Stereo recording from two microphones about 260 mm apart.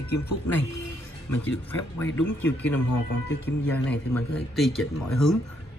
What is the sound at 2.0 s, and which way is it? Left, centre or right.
Speech, centre.